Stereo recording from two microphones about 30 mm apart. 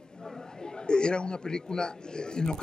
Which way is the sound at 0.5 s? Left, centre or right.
Left.